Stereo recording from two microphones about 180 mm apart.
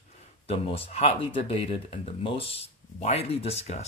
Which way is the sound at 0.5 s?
35° left (ahead or behind).